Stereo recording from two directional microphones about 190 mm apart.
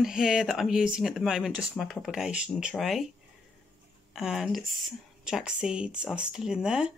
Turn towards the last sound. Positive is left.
turn(degrees=-5)  # may be behind; listen again after turning